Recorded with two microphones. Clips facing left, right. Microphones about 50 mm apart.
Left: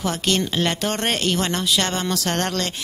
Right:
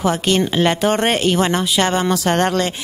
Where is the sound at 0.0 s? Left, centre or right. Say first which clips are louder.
Right 5 dB; centre.